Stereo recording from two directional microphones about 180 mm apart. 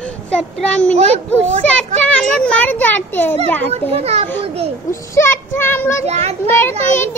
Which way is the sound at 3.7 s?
35° right (ahead or behind).